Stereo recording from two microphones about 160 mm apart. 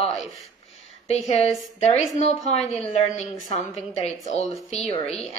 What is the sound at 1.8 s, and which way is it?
A woman's voice, 40° left (ahead or behind).